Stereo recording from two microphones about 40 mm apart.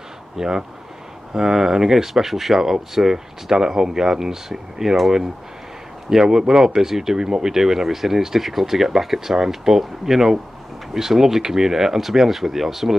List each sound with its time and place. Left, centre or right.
0.4 s speech: centre
6.0 s speech: centre